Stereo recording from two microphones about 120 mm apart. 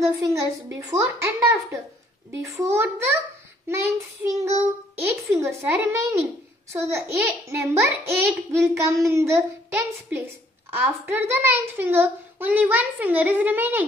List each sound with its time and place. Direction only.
0.1 s a child's voice: 25° right (ahead or behind)